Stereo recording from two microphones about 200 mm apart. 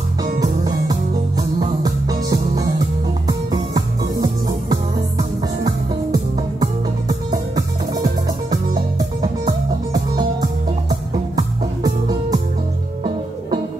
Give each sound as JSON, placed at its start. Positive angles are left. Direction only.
{"t": 0.2, "sound": "music", "side_deg": -20}